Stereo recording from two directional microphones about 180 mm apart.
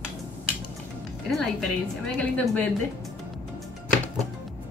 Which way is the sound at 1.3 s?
5° left (ahead or behind).